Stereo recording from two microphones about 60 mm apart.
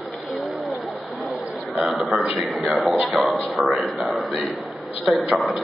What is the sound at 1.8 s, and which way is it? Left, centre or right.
A man's voice, centre.